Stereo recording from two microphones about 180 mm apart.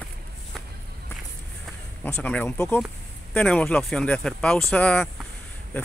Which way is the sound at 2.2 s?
5° left (ahead or behind).